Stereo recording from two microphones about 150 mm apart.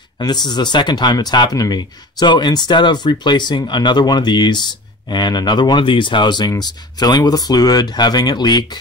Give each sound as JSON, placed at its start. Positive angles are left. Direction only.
{"t": 0.2, "sound": "speech", "side_deg": 30}